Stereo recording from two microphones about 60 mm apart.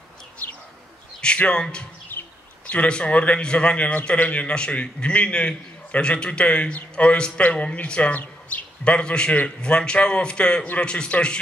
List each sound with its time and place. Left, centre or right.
1.2 s a man's voice: centre
2.0 s bird: left
2.7 s a man's voice: centre